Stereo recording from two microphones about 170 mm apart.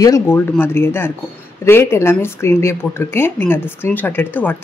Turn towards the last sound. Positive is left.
turn(degrees=10)  # may be behind; listen again after turning